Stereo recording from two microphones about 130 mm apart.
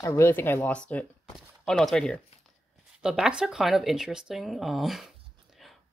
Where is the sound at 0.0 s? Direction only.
20° left (ahead or behind).